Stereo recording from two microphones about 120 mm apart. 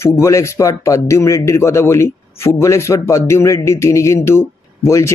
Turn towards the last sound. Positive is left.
turn(degrees=25)  # may be behind; listen again after turning